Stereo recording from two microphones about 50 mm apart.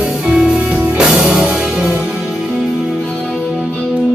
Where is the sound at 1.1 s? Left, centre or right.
Centre.